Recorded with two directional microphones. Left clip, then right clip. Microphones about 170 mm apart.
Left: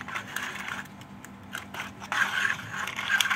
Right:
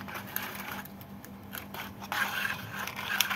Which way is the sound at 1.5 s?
25° right (ahead or behind).